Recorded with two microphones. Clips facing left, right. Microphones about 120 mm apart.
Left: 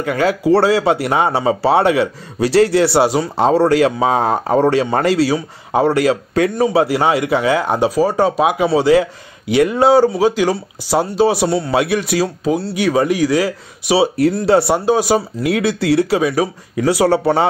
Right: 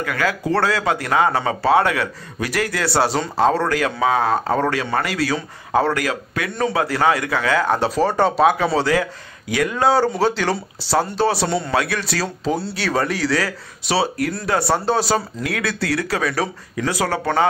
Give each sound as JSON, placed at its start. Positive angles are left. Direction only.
{"t": 0.0, "sound": "speech", "side_deg": 25}
{"t": 5.3, "sound": "speech", "side_deg": 20}
{"t": 10.0, "sound": "speech", "side_deg": 5}
{"t": 11.4, "sound": "a man's voice", "side_deg": 5}
{"t": 11.7, "sound": "speech", "side_deg": 20}
{"t": 12.4, "sound": "a man's voice", "side_deg": 0}
{"t": 12.7, "sound": "speech", "side_deg": 15}
{"t": 14.9, "sound": "speech", "side_deg": 15}